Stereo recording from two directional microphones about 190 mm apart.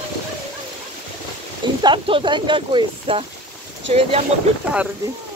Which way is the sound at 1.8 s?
25° right (ahead or behind).